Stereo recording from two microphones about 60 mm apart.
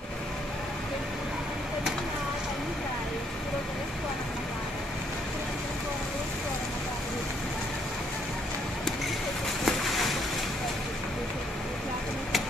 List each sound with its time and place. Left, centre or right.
9.7 s boat: centre